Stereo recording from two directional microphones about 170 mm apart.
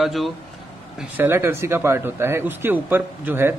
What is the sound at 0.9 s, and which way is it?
Speech, 10° right (ahead or behind).